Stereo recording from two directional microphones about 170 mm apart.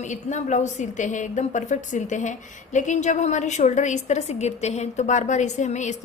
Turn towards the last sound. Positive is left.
turn(degrees=45)  # may be behind; listen again after turning